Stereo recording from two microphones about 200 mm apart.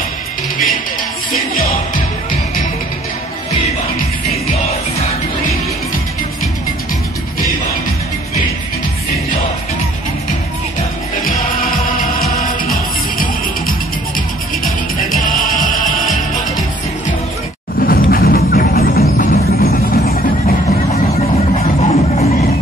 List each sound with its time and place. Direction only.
15.0 s music: 45° left (ahead or behind)
17.7 s music: 45° left (ahead or behind)
20.4 s music: 30° left (ahead or behind)